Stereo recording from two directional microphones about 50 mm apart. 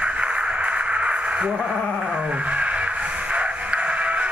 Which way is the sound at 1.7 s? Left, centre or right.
Centre.